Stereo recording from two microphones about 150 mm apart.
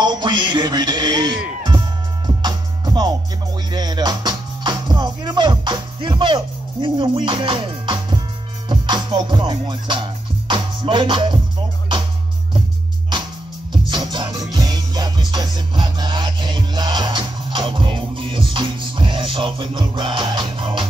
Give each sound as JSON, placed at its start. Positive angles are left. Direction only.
{"t": 0.0, "sound": "music", "side_deg": -30}
{"t": 13.8, "sound": "music", "side_deg": -30}